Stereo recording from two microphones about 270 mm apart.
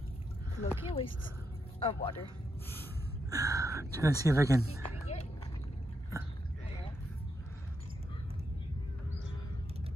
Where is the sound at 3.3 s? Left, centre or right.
Centre.